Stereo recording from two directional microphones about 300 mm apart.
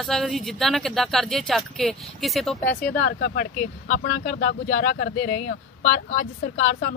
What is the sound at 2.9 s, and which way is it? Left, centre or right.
Speech, left.